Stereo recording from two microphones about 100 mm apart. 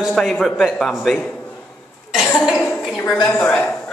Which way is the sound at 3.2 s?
25° left (ahead or behind).